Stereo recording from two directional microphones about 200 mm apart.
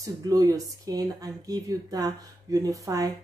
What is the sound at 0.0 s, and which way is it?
Speech, 20° right (ahead or behind).